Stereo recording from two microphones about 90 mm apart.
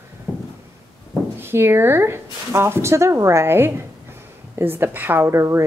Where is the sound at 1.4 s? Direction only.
25° right (ahead or behind).